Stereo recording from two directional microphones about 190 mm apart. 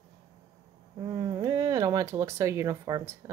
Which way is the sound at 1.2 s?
20° right (ahead or behind).